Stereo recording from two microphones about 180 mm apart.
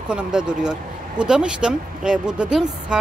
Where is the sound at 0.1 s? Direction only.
5° right (ahead or behind).